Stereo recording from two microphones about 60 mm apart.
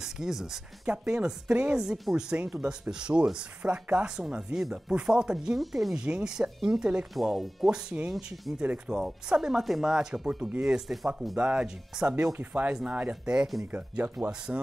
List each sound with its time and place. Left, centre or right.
0.0 s speech: centre
5.9 s speech: centre
7.2 s speech: centre
7.7 s speech: centre
8.5 s speech: centre
13.7 s speech: right